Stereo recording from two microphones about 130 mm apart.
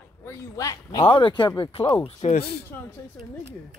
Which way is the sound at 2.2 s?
55° left (ahead or behind).